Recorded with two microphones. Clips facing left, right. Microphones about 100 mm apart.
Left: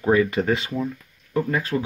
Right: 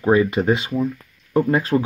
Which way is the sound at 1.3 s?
30° right (ahead or behind).